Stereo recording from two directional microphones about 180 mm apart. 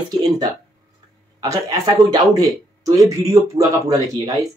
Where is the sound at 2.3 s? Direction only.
20° right (ahead or behind).